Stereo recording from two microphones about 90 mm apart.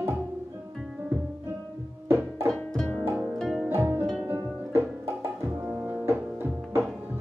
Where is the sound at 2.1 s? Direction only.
25° right (ahead or behind).